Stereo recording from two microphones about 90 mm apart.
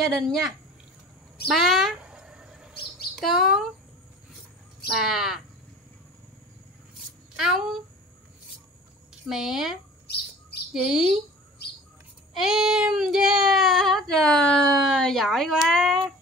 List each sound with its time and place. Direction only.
0.0 s child singing: centre (ahead or behind)
2.0 s a sound: 10° right (ahead or behind)
3.2 s child singing: centre (ahead or behind)
4.9 s child singing: 5° right (ahead or behind)
7.3 s child singing: 5° right (ahead or behind)
9.3 s child singing: 5° right (ahead or behind)
10.7 s speech: 5° right (ahead or behind)
12.4 s child singing: 5° right (ahead or behind)